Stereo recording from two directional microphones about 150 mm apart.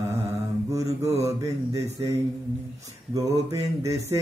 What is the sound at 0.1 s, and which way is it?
Mantra, 20° right (ahead or behind).